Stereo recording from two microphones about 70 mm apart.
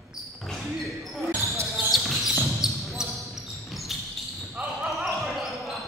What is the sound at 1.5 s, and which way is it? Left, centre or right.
Basketball bounce, right.